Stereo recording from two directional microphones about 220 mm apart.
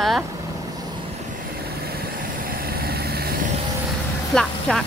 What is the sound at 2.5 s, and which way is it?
Vehicle, 45° right (ahead or behind).